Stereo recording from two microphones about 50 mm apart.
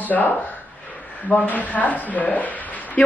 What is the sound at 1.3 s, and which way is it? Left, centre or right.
A woman's voice, left.